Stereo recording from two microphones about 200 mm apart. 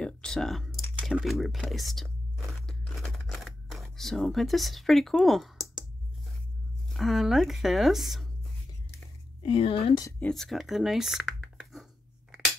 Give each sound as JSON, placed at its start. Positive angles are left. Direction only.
{"t": 0.0, "sound": "computer keyboard", "side_deg": 5}
{"t": 0.7, "sound": "typing", "side_deg": 5}
{"t": 1.1, "sound": "crunch", "side_deg": 0}
{"t": 6.9, "sound": "speech", "side_deg": 0}
{"t": 9.4, "sound": "speech", "side_deg": 25}
{"t": 10.2, "sound": "speech", "side_deg": 0}